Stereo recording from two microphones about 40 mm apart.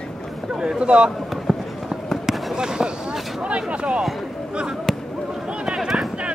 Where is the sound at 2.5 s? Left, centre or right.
Centre.